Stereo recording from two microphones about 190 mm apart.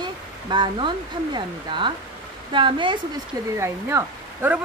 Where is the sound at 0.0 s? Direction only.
25° right (ahead or behind).